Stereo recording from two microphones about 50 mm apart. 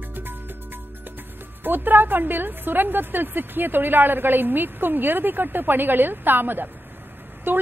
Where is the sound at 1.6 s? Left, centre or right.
Right.